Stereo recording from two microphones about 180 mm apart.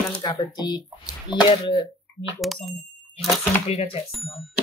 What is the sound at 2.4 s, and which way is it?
Speech, centre (ahead or behind).